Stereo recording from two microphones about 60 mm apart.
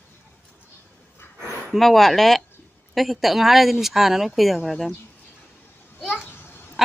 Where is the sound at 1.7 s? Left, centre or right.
Centre.